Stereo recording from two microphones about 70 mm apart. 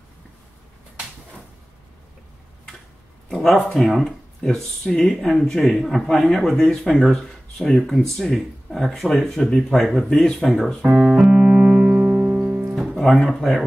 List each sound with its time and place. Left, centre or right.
3.3 s a sound: centre
3.7 s speech: centre
10.9 s speech: centre
11.1 s music: centre
12.7 s speech: centre